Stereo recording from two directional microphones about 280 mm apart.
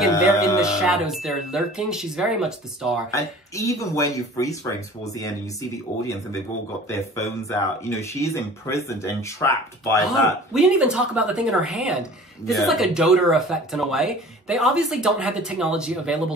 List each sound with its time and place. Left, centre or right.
0.6 s speech: centre
3.1 s speech: centre
10.5 s speech: centre